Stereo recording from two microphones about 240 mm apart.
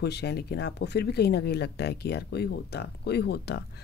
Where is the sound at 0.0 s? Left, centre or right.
Left.